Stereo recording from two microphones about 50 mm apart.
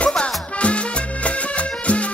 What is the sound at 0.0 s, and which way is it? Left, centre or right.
Music, left.